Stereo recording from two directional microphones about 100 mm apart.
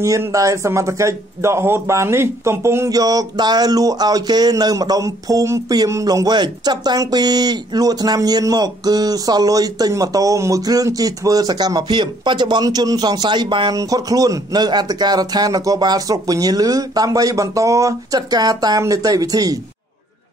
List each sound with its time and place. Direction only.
0.0 s a man's voice: 30° right (ahead or behind); by 13.7 s 50° right (ahead or behind)
13.7 s a man's voice: 40° right (ahead or behind)